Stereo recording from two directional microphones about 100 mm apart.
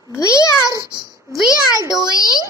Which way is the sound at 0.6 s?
40° right (ahead or behind).